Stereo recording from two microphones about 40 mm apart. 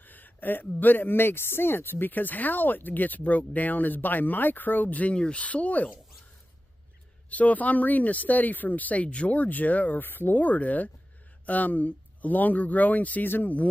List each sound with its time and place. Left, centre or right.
0.0 s a sound: left
0.7 s speech: left
5.1 s speech: left
5.4 s speech: left
7.2 s speech: left
10.0 s speech: left